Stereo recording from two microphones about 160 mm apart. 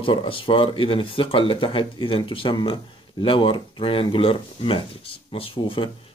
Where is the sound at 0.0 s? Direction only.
35° left (ahead or behind).